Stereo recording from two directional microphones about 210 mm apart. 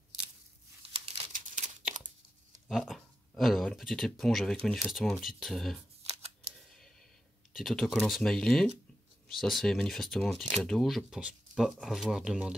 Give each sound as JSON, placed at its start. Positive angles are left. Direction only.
{"t": 1.3, "sound": "crumpling", "side_deg": -40}
{"t": 2.0, "sound": "tearing", "side_deg": -35}
{"t": 2.7, "sound": "speech", "side_deg": 0}
{"t": 6.0, "sound": "camera", "side_deg": -30}
{"t": 7.5, "sound": "speech", "side_deg": 0}